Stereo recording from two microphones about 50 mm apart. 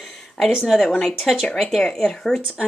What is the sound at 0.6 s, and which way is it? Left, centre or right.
Speech, centre.